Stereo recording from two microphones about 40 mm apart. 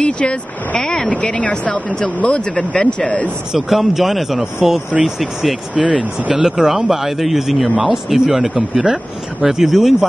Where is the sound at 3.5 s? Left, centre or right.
Centre.